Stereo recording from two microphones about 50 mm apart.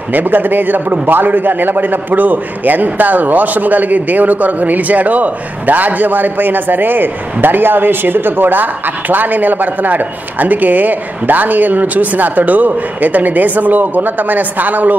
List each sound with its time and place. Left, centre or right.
0.1 s a man's voice: right